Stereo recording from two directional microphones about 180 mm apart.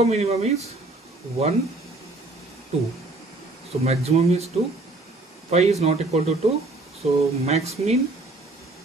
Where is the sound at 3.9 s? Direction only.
35° right (ahead or behind).